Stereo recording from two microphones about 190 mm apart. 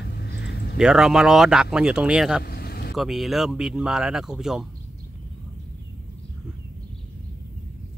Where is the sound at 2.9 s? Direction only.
Centre (ahead or behind).